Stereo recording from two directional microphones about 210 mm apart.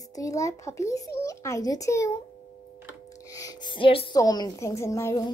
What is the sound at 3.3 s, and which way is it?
A woman's voice, 15° left (ahead or behind).